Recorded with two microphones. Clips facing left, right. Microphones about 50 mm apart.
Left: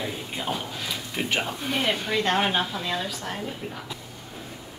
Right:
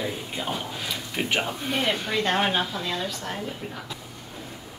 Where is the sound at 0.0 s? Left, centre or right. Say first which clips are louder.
Right 1 dB; centre.